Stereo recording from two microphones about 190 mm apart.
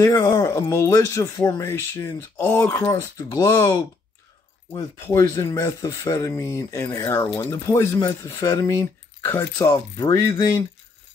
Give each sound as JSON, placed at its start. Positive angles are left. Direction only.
{"t": 0.0, "sound": "speech", "side_deg": 15}